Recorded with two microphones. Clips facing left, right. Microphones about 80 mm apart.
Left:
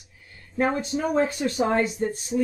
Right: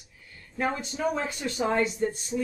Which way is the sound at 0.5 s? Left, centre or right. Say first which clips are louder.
Left 5 dB; left.